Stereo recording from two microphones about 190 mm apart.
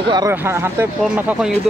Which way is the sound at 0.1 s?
15° right (ahead or behind).